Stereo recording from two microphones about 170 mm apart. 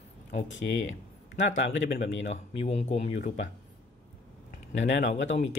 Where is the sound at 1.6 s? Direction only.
90° left.